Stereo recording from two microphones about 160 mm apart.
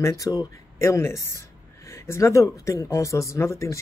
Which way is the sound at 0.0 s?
20° left (ahead or behind).